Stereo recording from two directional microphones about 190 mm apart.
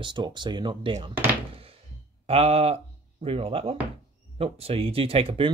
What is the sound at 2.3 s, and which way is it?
Speech, 30° right (ahead or behind).